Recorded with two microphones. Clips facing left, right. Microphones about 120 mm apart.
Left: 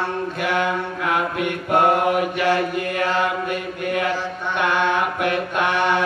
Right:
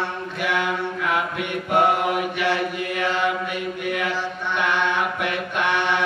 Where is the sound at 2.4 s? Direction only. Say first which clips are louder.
Left 3 dB; 40° left (ahead or behind).